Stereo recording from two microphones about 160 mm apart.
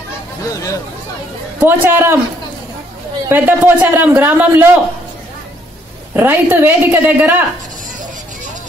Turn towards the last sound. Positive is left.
turn(degrees=-10)  # may be behind; listen again after turning